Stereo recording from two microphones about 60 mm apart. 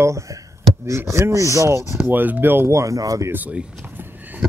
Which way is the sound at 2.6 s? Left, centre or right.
Right.